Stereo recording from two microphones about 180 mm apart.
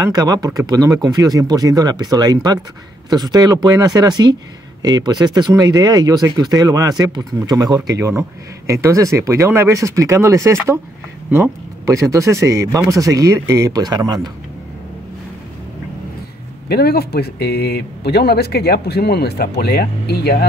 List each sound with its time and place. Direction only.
0.0 s speech: 20° right (ahead or behind)
16.6 s speech: 60° left (ahead or behind)